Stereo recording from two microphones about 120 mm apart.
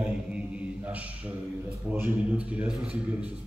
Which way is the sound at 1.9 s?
10° right (ahead or behind).